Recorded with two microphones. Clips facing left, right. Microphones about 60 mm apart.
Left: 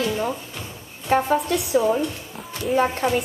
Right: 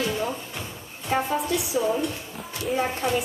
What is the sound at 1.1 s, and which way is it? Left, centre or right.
Speech, left.